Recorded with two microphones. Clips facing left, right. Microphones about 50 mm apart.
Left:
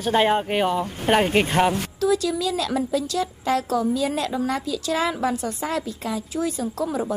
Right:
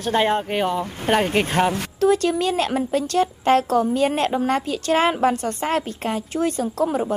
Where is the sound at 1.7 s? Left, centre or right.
Right.